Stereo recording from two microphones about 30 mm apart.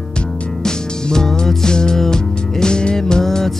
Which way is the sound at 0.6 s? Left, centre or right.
Left.